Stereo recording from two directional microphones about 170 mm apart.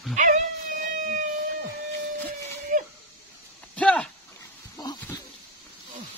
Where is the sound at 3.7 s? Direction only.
5° left (ahead or behind).